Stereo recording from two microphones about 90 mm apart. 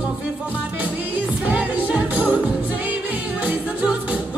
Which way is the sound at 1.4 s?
15° right (ahead or behind).